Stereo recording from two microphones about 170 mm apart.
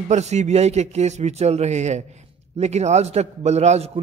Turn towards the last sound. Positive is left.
turn(degrees=-40)  # may be behind; listen again after turning